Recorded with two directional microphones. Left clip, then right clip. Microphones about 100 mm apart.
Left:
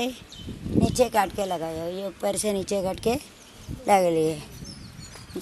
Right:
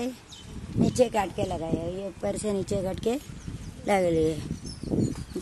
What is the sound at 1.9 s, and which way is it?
Speech, 5° right (ahead or behind).